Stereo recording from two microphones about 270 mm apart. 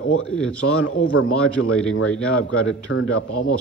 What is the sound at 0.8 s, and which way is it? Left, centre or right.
Speech, left.